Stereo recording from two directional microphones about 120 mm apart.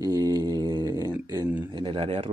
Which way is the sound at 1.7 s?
45° right (ahead or behind).